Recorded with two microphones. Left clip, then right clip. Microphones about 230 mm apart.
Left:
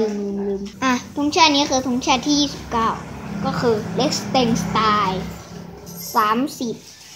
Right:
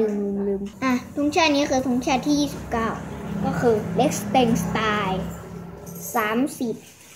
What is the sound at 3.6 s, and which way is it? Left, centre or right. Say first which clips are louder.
A child's voice: even; centre.